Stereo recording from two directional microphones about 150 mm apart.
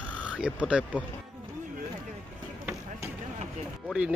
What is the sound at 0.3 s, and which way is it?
Speech, 10° right (ahead or behind).